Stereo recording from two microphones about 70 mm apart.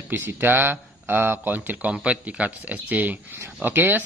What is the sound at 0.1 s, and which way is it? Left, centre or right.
Speech, right.